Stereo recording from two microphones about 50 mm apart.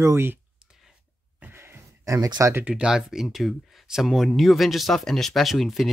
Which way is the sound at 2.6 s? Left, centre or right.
Centre.